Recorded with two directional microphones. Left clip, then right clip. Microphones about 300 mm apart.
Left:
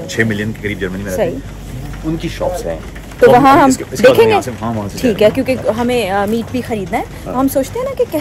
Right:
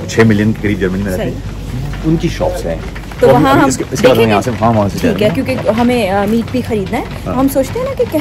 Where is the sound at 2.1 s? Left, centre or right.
Centre.